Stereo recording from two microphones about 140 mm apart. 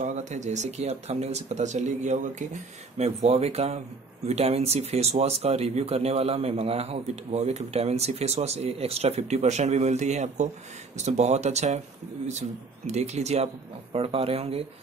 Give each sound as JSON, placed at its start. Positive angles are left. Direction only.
{"t": 0.0, "sound": "a man's voice", "side_deg": -60}